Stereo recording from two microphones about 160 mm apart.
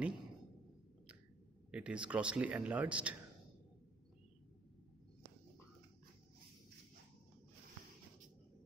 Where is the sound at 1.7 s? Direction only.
5° right (ahead or behind).